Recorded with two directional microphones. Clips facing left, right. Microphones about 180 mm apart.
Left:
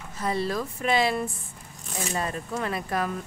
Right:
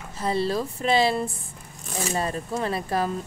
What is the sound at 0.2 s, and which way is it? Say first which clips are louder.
Speech: right 3 dB; 30° right (ahead or behind).